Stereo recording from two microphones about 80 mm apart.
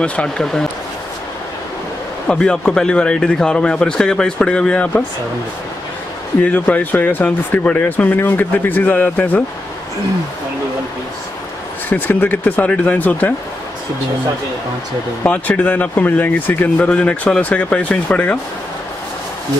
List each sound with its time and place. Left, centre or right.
0.0 s a man's voice: centre
2.2 s a man's voice: centre
6.4 s speech: left
11.9 s speech: left
15.2 s speech: centre